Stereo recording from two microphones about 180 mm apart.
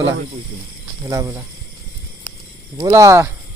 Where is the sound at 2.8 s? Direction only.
15° right (ahead or behind).